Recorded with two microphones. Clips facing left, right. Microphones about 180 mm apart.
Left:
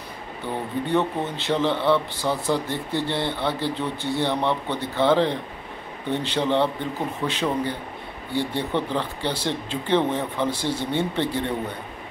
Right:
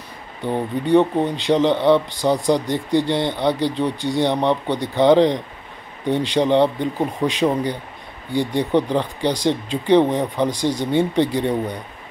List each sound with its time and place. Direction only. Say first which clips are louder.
0.4 s speech: right 6 dB; 15° right (ahead or behind)